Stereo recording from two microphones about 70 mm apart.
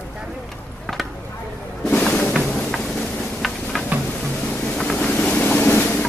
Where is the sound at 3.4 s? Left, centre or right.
Centre.